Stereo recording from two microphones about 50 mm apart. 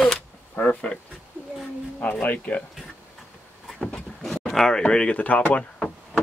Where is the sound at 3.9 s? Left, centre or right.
Centre.